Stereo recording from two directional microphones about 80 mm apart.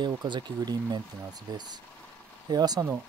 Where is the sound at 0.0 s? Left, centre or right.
Right.